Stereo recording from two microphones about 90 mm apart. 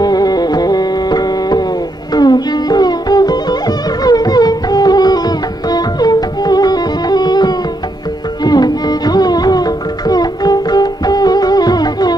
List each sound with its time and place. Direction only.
0.0 s music: 45° left (ahead or behind)